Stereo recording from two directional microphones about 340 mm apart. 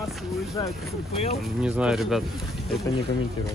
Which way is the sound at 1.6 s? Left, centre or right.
Centre.